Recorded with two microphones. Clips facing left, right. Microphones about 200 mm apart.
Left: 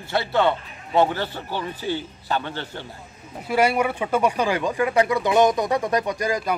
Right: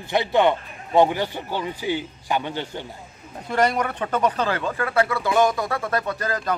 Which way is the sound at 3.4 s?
10° left (ahead or behind).